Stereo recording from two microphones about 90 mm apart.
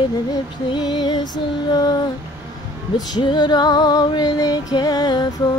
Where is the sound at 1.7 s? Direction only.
45° left (ahead or behind).